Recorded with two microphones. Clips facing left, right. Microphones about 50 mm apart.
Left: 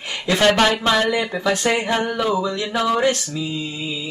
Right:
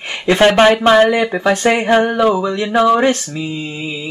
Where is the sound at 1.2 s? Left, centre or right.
Right.